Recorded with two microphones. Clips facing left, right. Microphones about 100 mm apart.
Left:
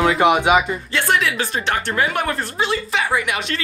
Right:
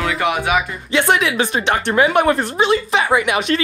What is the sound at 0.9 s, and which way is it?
Speech, 15° right (ahead or behind).